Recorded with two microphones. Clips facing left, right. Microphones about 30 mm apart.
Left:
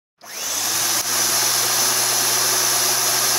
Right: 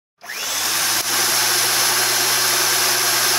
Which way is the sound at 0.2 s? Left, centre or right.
Right.